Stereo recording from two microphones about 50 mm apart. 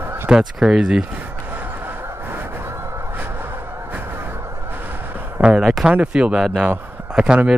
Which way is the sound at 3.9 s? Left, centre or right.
Right.